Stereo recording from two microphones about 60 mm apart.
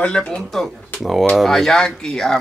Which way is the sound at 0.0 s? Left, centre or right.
Centre.